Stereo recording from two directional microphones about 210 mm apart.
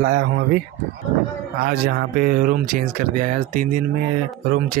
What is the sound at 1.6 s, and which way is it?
Speech, 45° right (ahead or behind).